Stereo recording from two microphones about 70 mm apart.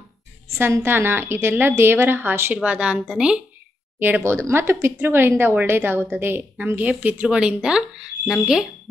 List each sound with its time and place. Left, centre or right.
0.8 s a woman's voice: right
2.5 s speech: centre
4.2 s a woman's voice: right; by 8.6 s centre